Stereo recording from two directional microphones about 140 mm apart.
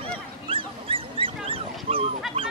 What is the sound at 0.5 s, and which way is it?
Dog, 40° right (ahead or behind).